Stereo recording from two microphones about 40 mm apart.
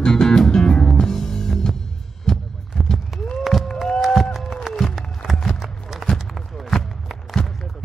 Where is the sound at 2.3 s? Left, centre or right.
Centre.